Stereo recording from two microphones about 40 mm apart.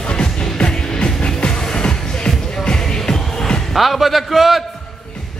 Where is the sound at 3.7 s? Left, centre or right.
Centre.